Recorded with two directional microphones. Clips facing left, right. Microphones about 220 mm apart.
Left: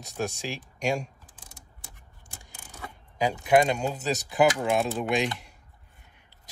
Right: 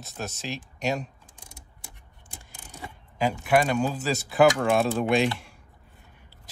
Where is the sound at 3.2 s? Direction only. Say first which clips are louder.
Left 1 dB; 15° left (ahead or behind).